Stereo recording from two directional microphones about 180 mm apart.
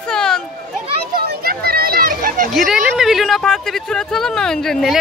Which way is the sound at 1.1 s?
55° right (ahead or behind).